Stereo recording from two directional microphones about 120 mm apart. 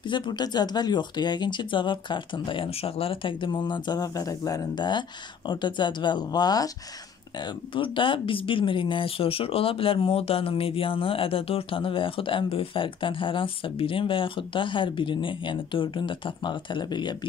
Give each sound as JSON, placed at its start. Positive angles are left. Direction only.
{"t": 0.0, "sound": "speech", "side_deg": 40}